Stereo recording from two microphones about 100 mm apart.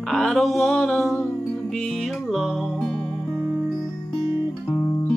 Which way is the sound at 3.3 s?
20° right (ahead or behind).